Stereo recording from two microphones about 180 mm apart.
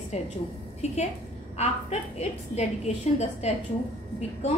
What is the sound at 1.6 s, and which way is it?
A woman's voice, 35° left (ahead or behind).